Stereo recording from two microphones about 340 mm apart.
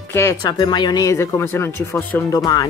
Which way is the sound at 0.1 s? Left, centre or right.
Centre.